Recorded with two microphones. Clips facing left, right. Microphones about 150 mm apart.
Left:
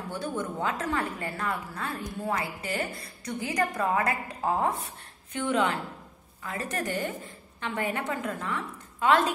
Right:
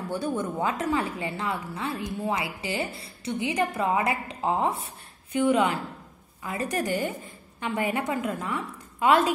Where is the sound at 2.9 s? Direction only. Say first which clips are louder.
Right 4 dB; 25° right (ahead or behind).